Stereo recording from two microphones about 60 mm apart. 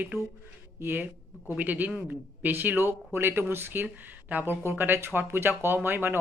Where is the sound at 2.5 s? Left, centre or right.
Right.